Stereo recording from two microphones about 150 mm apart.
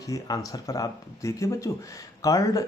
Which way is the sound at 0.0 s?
25° left (ahead or behind).